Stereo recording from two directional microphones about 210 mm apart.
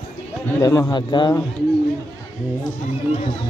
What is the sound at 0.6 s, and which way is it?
Speech, 15° left (ahead or behind).